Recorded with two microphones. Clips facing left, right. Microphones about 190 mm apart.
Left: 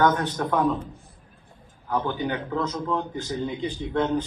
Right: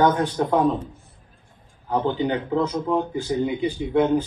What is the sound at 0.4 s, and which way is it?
Speech, 20° right (ahead or behind).